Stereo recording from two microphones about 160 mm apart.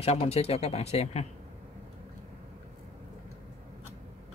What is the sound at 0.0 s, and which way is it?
Speech, 40° left (ahead or behind).